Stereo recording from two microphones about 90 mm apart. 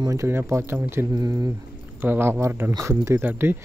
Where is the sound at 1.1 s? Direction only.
40° right (ahead or behind).